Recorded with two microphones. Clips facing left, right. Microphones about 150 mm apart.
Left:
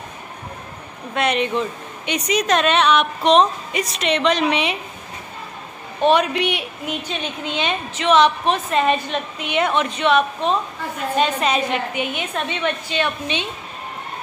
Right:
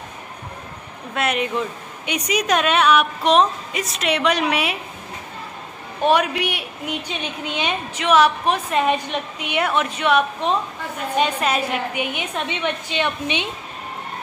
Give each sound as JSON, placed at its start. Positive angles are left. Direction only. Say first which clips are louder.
{"t": 1.1, "sound": "a woman's voice", "louder": "left 2 dB", "side_deg": -5}
{"t": 6.0, "sound": "a woman's voice", "louder": "left 2 dB", "side_deg": -10}